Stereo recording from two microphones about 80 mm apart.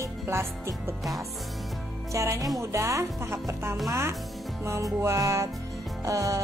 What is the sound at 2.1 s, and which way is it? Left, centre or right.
Music, right.